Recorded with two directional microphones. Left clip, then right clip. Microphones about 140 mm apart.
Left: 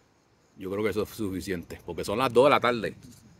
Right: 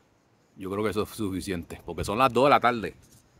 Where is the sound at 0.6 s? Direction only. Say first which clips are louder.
Even; 40° right (ahead or behind); by 3.0 s 25° right (ahead or behind).